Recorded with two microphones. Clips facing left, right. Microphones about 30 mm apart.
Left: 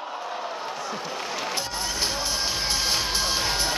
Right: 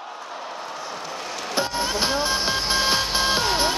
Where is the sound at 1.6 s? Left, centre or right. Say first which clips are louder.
Right 5 dB; right.